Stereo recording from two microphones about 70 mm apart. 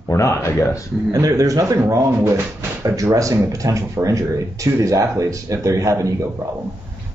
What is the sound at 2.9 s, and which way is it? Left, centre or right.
A man's voice, right.